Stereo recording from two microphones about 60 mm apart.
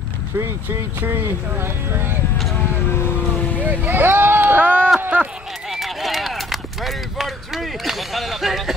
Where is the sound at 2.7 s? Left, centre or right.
Left.